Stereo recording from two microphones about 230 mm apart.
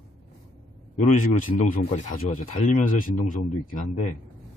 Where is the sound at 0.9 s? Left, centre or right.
Left.